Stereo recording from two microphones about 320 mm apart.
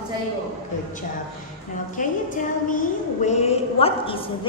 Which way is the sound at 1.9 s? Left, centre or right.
Left.